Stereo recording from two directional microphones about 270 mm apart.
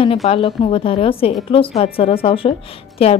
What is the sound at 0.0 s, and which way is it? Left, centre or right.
A woman's voice, left.